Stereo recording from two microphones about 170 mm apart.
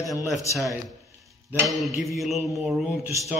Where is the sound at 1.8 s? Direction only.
Centre (ahead or behind).